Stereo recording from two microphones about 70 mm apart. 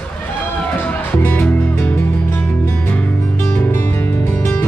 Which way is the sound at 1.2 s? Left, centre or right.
Left.